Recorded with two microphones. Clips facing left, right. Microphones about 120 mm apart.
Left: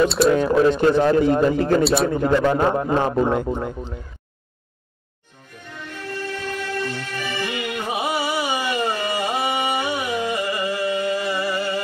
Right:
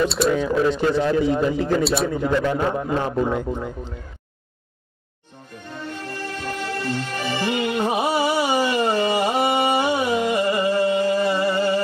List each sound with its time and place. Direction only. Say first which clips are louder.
0.3 s a man's voice: left 3 dB; 60° left (ahead or behind)
5.7 s music: right 1 dB; 25° right (ahead or behind)